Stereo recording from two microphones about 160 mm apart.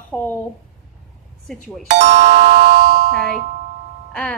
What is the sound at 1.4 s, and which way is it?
Speech, 5° left (ahead or behind).